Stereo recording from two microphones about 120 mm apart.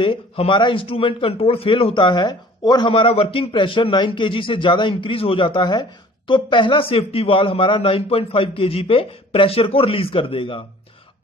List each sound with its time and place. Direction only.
0.0 s a man's voice: 45° left (ahead or behind)
2.9 s a man's voice: 50° left (ahead or behind)